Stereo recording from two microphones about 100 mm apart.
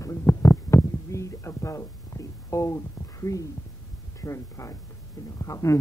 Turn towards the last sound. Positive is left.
turn(degrees=30)  # may be behind; listen again after turning